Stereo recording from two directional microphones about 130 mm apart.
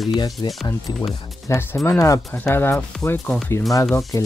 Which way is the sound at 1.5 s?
25° left (ahead or behind).